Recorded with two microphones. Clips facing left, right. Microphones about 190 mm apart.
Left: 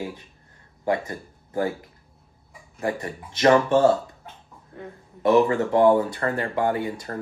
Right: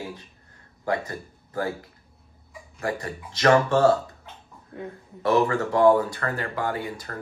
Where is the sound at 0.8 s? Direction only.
20° left (ahead or behind).